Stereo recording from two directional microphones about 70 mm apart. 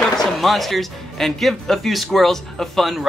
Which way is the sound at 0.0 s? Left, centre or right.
Centre.